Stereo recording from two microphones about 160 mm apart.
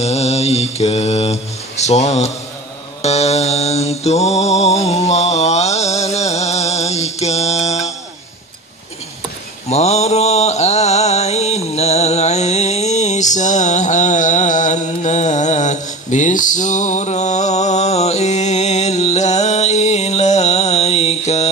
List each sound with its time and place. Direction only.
0.0 s mantra: 40° left (ahead or behind)
9.7 s mantra: 40° left (ahead or behind)